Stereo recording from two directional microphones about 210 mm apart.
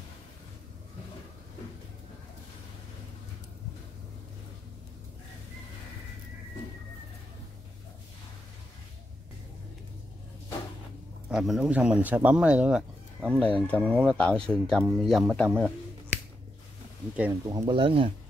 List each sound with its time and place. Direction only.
11.2 s speech: centre (ahead or behind)
13.4 s speech: 5° left (ahead or behind)
17.2 s speech: 15° right (ahead or behind)